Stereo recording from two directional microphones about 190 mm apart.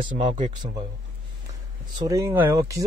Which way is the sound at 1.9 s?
20° right (ahead or behind).